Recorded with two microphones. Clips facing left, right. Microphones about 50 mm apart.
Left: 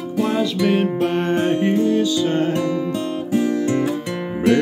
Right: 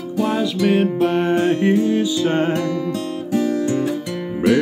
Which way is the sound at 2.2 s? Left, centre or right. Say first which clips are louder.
Right 1 dB; right.